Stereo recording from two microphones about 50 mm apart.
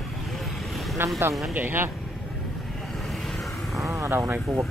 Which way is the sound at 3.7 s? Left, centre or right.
Right.